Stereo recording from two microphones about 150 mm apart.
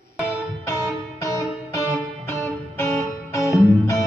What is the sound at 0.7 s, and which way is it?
Music, 20° left (ahead or behind).